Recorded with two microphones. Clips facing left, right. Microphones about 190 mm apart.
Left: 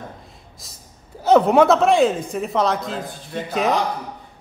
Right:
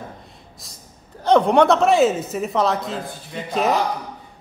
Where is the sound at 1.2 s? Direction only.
5° left (ahead or behind).